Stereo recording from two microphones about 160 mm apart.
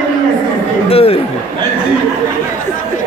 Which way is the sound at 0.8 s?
40° left (ahead or behind).